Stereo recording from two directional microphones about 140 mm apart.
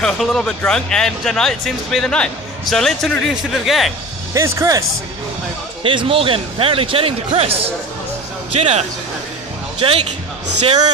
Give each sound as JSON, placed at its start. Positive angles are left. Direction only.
{"t": 0.0, "sound": "speech", "side_deg": 5}
{"t": 4.3, "sound": "speech", "side_deg": -20}
{"t": 5.9, "sound": "a man's voice", "side_deg": -40}